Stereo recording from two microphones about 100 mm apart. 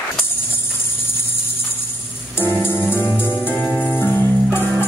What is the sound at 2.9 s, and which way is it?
Music, 20° left (ahead or behind).